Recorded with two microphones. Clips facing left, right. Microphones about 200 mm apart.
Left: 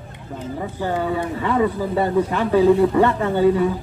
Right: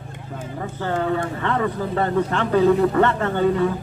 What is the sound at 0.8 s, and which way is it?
Speech, 10° left (ahead or behind).